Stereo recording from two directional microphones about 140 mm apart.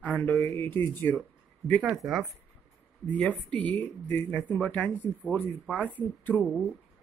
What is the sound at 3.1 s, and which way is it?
Speech, 10° left (ahead or behind).